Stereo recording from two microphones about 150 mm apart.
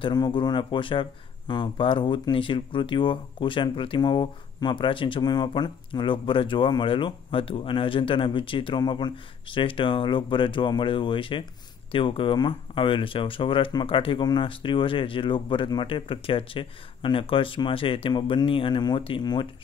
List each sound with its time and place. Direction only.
0.0 s speech: 30° left (ahead or behind)